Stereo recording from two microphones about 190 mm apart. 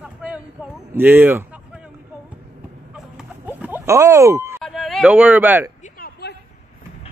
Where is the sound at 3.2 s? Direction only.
10° right (ahead or behind).